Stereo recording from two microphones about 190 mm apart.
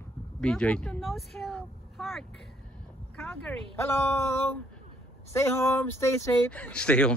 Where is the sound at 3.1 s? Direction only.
5° left (ahead or behind).